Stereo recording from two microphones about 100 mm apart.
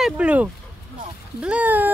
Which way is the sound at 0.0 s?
10° right (ahead or behind).